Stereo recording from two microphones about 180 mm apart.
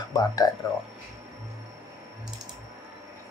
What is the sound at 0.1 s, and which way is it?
Speech, 20° left (ahead or behind).